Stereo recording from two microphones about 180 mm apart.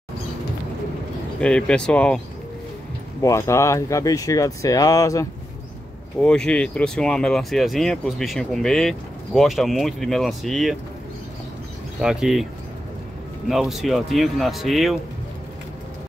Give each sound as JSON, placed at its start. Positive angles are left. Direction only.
{"t": 1.4, "sound": "speech", "side_deg": 5}
{"t": 3.2, "sound": "speech", "side_deg": 15}
{"t": 6.2, "sound": "speech", "side_deg": 5}
{"t": 12.0, "sound": "speech", "side_deg": -5}
{"t": 13.5, "sound": "speech", "side_deg": 0}